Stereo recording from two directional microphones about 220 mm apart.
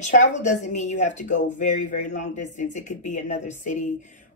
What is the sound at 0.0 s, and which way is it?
Speech, 35° left (ahead or behind).